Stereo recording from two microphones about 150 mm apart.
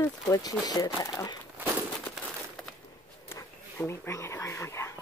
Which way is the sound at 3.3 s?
15° left (ahead or behind).